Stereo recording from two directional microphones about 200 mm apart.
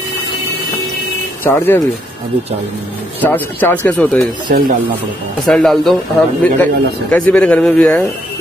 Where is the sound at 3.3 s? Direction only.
10° left (ahead or behind).